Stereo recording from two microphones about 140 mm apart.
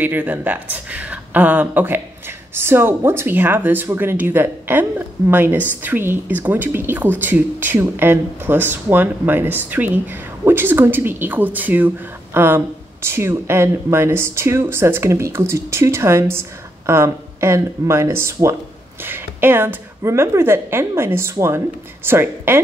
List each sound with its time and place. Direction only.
0.0 s speech: 15° right (ahead or behind)